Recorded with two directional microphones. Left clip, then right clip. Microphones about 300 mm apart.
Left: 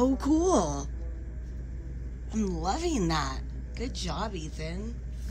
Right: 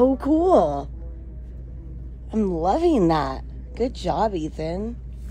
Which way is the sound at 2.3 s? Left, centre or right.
Centre.